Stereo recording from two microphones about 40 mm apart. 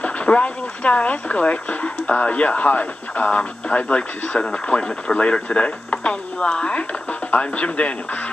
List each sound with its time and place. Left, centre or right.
0.0 s speech: left